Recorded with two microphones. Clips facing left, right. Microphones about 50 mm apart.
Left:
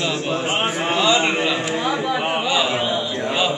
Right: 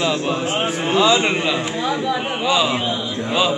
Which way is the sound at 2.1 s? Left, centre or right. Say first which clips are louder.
Right 1 dB; centre.